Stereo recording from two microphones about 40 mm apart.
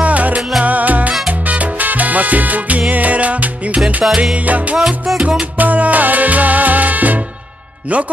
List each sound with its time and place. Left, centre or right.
0.0 s music: right
1.4 s salsa music: right
2.9 s music: right
4.7 s music: centre
5.6 s music: right